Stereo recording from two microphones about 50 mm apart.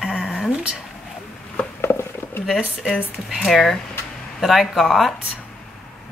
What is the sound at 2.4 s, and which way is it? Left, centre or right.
Speech, centre.